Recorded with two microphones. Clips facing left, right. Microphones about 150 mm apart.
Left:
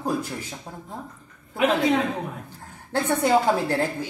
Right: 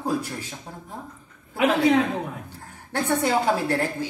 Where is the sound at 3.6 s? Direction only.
20° left (ahead or behind).